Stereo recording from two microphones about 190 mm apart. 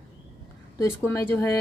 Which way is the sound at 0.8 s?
15° left (ahead or behind).